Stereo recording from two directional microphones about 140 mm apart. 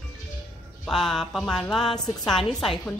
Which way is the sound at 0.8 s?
5° left (ahead or behind).